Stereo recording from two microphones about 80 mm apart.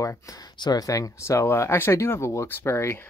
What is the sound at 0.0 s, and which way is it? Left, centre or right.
Speech, left.